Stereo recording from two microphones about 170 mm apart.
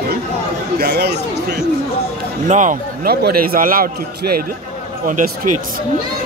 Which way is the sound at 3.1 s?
65° right (ahead or behind).